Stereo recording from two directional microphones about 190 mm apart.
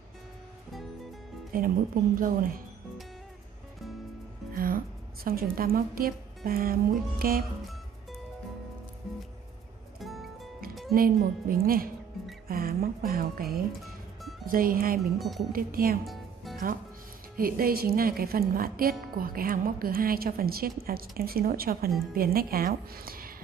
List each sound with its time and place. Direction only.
1.5 s a woman's voice: 50° right (ahead or behind)
4.6 s a woman's voice: 50° right (ahead or behind)
9.9 s music: centre (ahead or behind)
10.9 s a woman's voice: 50° right (ahead or behind)
15.1 s speech: centre (ahead or behind)
15.5 s a woman's voice: 50° right (ahead or behind)
16.5 s music: centre (ahead or behind)
17.4 s a woman's voice: 50° right (ahead or behind)